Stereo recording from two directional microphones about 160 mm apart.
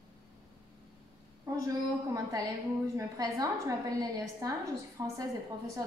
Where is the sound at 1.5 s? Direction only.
20° right (ahead or behind).